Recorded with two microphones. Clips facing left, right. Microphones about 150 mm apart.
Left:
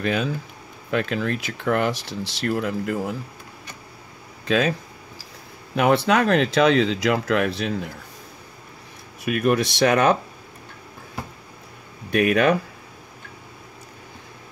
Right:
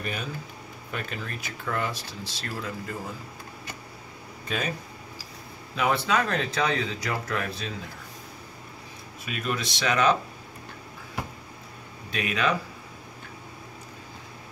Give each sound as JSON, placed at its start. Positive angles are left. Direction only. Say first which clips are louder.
{"t": 0.0, "sound": "speech", "louder": "left 10 dB", "side_deg": 90}
{"t": 0.9, "sound": "speech", "louder": "left 12 dB", "side_deg": 80}
{"t": 4.5, "sound": "speech", "louder": "left 10 dB", "side_deg": 90}
{"t": 5.8, "sound": "speech", "louder": "left 7 dB", "side_deg": 65}
{"t": 9.2, "sound": "speech", "louder": "left 11 dB", "side_deg": 60}
{"t": 12.1, "sound": "speech", "louder": "left 9 dB", "side_deg": 60}